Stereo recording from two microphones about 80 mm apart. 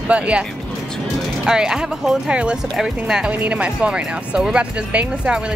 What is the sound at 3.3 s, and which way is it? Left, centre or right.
Speech, centre.